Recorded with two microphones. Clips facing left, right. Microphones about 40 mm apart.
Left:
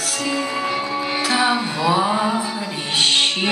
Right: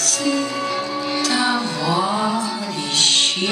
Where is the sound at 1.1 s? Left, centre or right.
Centre.